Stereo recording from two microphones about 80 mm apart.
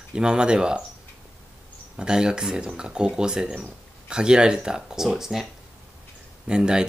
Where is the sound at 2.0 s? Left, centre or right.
Centre.